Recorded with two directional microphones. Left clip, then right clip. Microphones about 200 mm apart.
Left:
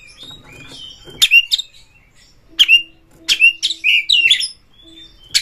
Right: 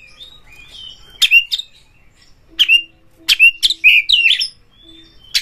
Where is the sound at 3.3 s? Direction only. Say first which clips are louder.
Right 3 dB; 30° right (ahead or behind).